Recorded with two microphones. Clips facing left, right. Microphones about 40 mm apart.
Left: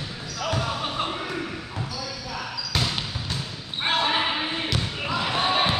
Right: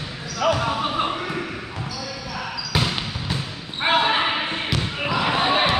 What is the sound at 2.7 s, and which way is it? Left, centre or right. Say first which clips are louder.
Basketball bounce: right 3 dB; centre.